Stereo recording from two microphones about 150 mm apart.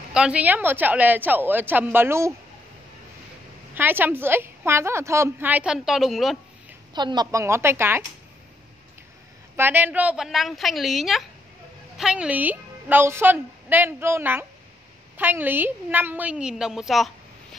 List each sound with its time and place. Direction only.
0.1 s a woman's voice: 5° right (ahead or behind)
3.7 s a woman's voice: 10° right (ahead or behind)
6.9 s a woman's voice: 30° right (ahead or behind)
9.6 s a woman's voice: 15° right (ahead or behind)